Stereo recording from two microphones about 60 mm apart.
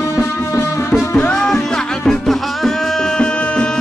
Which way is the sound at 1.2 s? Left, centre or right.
Centre.